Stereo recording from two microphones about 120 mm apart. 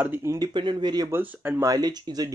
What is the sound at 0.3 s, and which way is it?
Speech, 35° right (ahead or behind).